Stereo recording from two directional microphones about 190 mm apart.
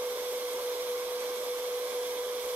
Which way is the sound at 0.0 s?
10° right (ahead or behind).